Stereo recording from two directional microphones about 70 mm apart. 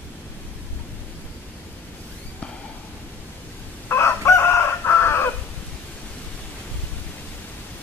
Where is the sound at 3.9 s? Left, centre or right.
Left.